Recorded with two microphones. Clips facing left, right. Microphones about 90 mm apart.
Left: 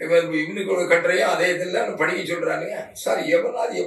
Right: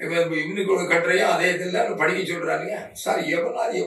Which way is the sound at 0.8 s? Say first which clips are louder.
Left 2 dB; 20° left (ahead or behind).